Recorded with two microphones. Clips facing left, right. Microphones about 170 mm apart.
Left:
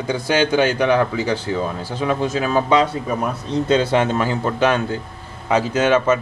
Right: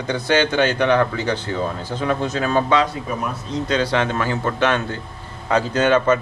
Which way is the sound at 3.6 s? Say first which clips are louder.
Left 3 dB; 20° left (ahead or behind).